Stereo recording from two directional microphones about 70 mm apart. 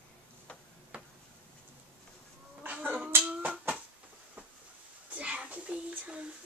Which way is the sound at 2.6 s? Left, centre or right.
Right.